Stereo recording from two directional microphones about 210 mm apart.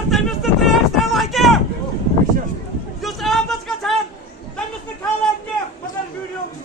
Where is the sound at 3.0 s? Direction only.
Centre (ahead or behind).